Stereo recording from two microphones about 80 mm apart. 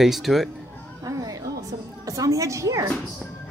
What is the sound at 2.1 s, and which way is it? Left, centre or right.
Speech, right.